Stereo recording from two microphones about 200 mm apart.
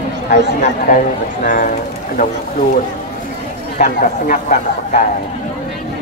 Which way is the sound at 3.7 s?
45° left (ahead or behind).